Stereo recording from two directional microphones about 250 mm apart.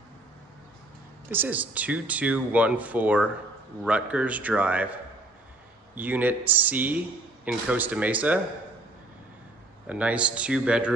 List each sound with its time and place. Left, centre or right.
1.3 s speech: centre
5.9 s speech: centre
9.8 s speech: centre